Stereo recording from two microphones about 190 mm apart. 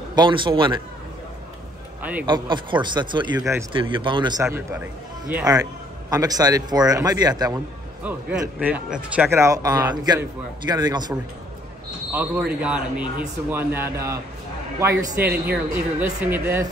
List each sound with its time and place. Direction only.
0.1 s a man's voice: 25° right (ahead or behind)
2.2 s a man's voice: 25° right (ahead or behind)
3.3 s speech: 15° right (ahead or behind)
3.7 s a man's voice: 25° right (ahead or behind)
8.0 s a man's voice: 5° right (ahead or behind)
12.1 s speech: 10° right (ahead or behind)
15.2 s a woman's voice: 55° right (ahead or behind)
15.7 s speech: 10° right (ahead or behind)